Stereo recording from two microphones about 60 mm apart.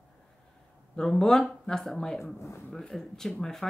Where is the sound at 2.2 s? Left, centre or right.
Left.